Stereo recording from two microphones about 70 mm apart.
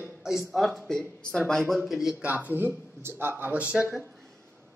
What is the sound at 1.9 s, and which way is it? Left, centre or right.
Speech, centre.